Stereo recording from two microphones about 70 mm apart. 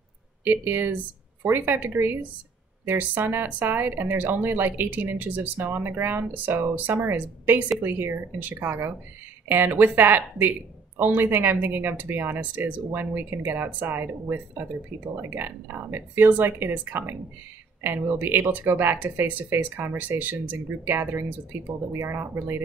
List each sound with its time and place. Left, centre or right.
0.4 s speech: right